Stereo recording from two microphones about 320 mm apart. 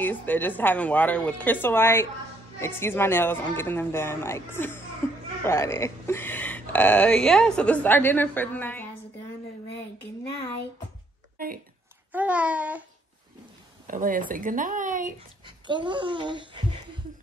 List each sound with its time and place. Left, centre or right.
0.0 s speech: centre
11.3 s a sound: right
12.1 s speech: centre
13.8 s speech: right